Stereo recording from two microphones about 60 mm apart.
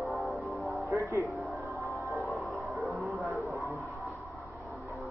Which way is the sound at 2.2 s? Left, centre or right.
Centre.